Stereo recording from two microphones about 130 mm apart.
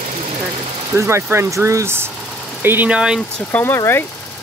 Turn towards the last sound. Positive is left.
turn(degrees=20)  # may be behind; listen again after turning